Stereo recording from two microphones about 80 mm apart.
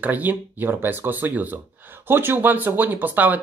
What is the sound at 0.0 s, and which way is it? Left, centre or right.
Speech, right.